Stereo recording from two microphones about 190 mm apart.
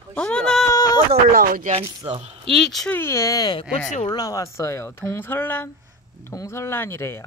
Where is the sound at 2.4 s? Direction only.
Centre (ahead or behind).